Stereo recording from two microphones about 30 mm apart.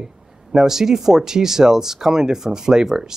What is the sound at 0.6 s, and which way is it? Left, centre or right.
Speech, centre.